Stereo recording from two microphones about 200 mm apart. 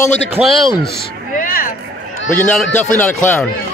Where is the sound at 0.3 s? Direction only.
Centre (ahead or behind).